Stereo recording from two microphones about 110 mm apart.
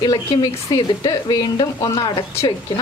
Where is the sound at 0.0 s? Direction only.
35° left (ahead or behind).